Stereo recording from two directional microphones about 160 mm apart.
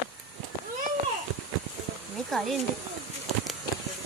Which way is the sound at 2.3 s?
Centre (ahead or behind).